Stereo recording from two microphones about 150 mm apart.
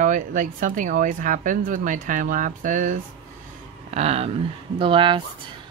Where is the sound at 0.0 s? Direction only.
60° right (ahead or behind).